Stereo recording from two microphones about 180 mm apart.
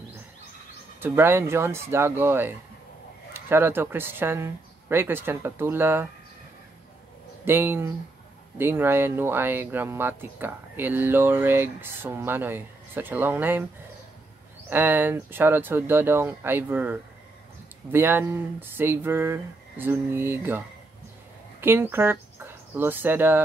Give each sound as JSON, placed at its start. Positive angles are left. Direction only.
{"t": 1.0, "sound": "speech", "side_deg": -10}
{"t": 7.4, "sound": "speech", "side_deg": -10}
{"t": 14.7, "sound": "speech", "side_deg": -10}